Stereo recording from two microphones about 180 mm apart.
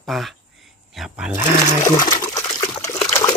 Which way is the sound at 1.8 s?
20° left (ahead or behind).